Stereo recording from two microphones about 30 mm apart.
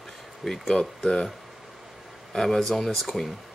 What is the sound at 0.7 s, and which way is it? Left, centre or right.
Speech, left.